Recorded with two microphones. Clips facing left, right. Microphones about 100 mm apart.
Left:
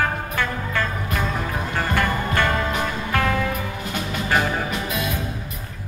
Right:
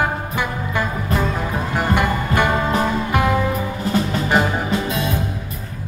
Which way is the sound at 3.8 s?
30° right (ahead or behind).